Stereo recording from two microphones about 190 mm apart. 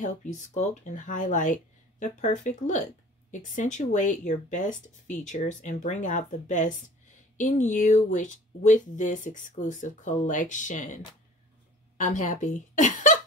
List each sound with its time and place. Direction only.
0.0 s speech: 40° left (ahead or behind)
12.0 s a woman's voice: 40° left (ahead or behind)